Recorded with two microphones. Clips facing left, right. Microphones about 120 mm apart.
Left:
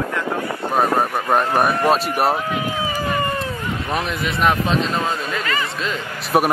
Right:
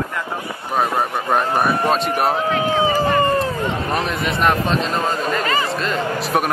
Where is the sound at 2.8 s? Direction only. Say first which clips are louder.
Right 8 dB; 30° right (ahead or behind).